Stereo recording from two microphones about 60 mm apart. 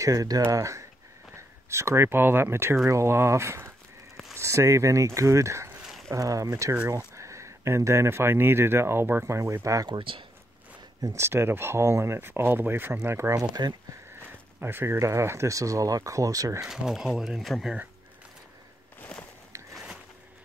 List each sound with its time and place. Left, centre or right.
0.0 s speech: right
0.5 s speech: right
1.3 s speech: right
5.8 s a sound: centre
6.1 s speech: right
9.2 s speech: right
11.1 s speech: right
14.6 s speech: right
15.0 s speech: right
16.6 s speech: centre
18.9 s a sound: left